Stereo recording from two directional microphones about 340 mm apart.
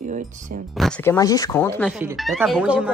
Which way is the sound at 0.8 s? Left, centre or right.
Centre.